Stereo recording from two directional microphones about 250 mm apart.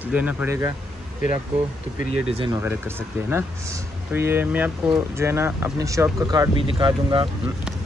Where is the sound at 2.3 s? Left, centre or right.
Right.